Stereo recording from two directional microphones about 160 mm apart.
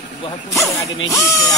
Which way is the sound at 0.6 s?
20° left (ahead or behind).